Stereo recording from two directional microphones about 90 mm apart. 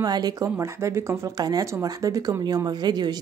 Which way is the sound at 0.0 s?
50° right (ahead or behind).